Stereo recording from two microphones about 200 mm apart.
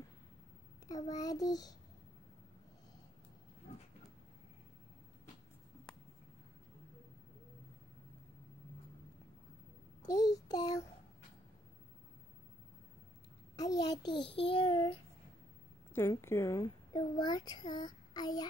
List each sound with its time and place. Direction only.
0.8 s a child's voice: 15° left (ahead or behind)
10.0 s child singing: 15° left (ahead or behind)
13.6 s a child's voice: 20° left (ahead or behind)
15.9 s a child's voice: 10° left (ahead or behind)